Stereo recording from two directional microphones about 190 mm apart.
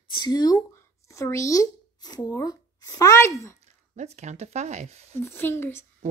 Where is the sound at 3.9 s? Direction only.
35° right (ahead or behind).